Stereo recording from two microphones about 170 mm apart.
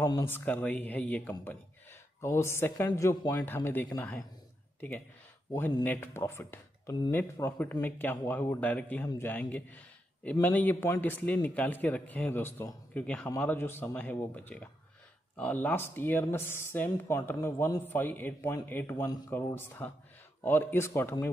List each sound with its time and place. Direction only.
0.0 s speech: 15° left (ahead or behind)
5.5 s speech: 20° left (ahead or behind)